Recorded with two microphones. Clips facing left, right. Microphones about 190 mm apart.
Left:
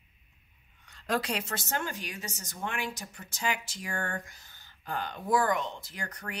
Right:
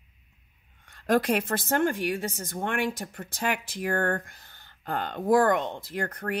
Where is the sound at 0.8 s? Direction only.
55° right (ahead or behind).